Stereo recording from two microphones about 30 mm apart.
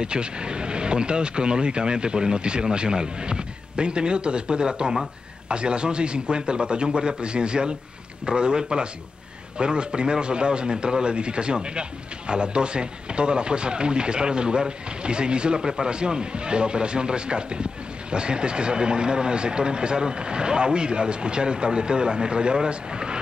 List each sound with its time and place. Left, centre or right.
0.0 s a man's voice: right